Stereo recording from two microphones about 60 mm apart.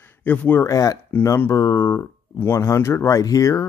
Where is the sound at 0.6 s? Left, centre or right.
Left.